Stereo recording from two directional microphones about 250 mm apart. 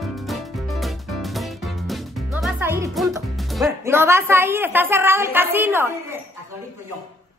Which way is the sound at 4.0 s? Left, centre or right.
Centre.